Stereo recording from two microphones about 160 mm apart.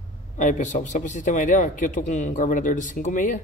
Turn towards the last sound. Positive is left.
turn(degrees=55)  # may be behind; listen again after turning